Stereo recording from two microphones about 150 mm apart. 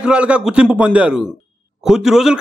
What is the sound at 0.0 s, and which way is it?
A man's voice, 5° right (ahead or behind).